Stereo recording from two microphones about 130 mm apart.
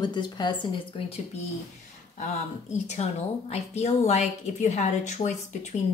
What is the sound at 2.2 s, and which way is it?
A woman's voice, 65° left (ahead or behind).